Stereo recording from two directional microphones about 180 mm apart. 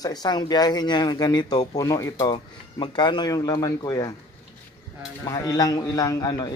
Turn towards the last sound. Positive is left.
turn(degrees=20)  # may be behind; listen again after turning